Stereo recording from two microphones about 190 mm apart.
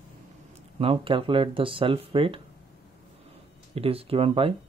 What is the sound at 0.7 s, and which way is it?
Speech, 30° right (ahead or behind).